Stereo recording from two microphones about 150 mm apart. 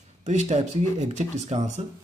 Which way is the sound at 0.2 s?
50° right (ahead or behind).